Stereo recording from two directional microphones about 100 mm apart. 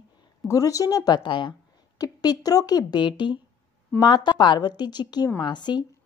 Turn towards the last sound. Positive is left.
turn(degrees=45)  # may be behind; listen again after turning